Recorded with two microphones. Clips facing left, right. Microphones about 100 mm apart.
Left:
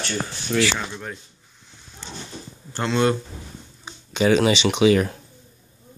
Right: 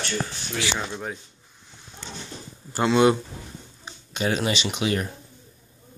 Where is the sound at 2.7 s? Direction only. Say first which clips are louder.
Right 3 dB; 10° right (ahead or behind).